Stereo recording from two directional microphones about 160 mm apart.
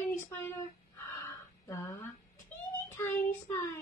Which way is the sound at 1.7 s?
15° left (ahead or behind).